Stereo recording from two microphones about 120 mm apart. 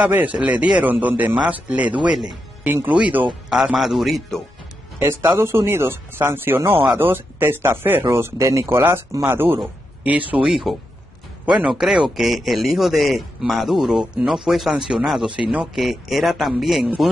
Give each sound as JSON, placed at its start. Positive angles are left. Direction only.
{"t": 0.0, "sound": "speech", "side_deg": -10}
{"t": 4.9, "sound": "speech", "side_deg": -20}